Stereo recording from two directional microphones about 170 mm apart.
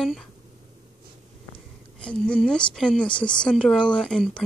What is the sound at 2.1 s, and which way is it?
Speech, 5° left (ahead or behind).